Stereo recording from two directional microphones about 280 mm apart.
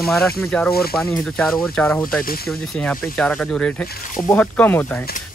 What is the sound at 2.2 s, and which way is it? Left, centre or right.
Speech, left.